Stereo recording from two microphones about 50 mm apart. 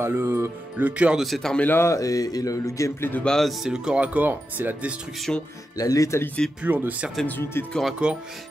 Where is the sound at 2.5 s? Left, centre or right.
Left.